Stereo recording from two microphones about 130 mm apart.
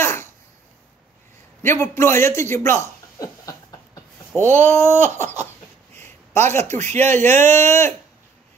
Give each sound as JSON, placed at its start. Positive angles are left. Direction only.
{"t": 0.0, "sound": "a sound", "side_deg": 20}
{"t": 1.6, "sound": "a sound", "side_deg": 20}
{"t": 4.3, "sound": "speech", "side_deg": 0}
{"t": 4.6, "sound": "speech", "side_deg": 15}
{"t": 6.3, "sound": "speech", "side_deg": -60}
{"t": 7.5, "sound": "speech", "side_deg": 20}